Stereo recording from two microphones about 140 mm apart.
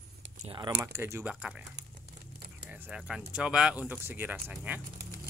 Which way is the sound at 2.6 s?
10° right (ahead or behind).